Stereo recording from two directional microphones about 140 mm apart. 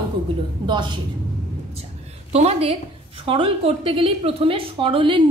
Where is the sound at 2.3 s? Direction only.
50° right (ahead or behind).